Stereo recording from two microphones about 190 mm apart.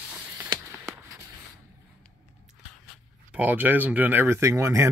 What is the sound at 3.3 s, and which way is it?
Speech, 10° right (ahead or behind).